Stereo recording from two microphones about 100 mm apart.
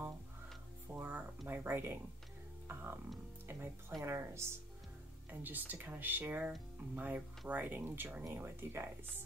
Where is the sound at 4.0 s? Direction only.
30° right (ahead or behind).